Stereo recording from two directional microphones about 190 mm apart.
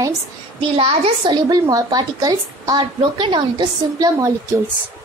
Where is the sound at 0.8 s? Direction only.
30° right (ahead or behind).